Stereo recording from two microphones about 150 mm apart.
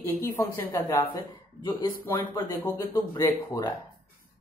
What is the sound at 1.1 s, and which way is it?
Speech, 30° left (ahead or behind).